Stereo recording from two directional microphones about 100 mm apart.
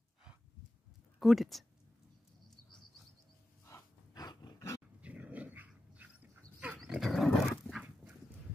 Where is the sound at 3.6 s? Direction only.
30° left (ahead or behind).